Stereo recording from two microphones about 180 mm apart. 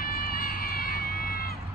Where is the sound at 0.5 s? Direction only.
55° left (ahead or behind).